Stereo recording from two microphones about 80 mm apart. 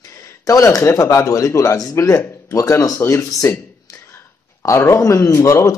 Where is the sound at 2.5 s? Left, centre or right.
Left.